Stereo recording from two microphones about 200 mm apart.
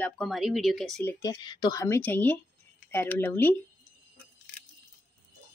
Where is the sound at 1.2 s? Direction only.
20° left (ahead or behind).